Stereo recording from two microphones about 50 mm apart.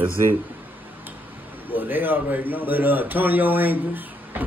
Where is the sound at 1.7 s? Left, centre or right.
Right.